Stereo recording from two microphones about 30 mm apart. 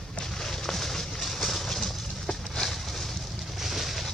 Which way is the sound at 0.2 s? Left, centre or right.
Centre.